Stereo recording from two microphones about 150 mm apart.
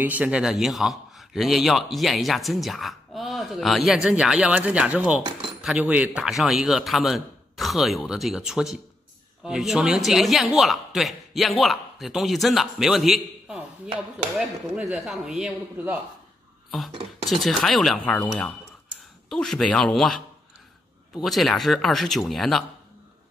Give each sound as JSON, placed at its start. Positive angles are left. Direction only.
{"t": 0.0, "sound": "a man's voice", "side_deg": -10}
{"t": 16.9, "sound": "speech", "side_deg": -40}
{"t": 17.3, "sound": "a man's voice", "side_deg": 0}
{"t": 21.2, "sound": "a man's voice", "side_deg": 0}